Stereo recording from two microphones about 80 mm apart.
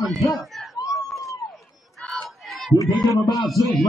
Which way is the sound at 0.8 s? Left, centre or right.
Left.